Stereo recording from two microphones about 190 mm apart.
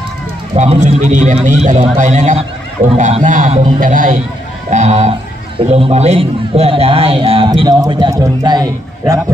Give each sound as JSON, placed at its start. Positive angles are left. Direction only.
{"t": 0.6, "sound": "a man's voice", "side_deg": -35}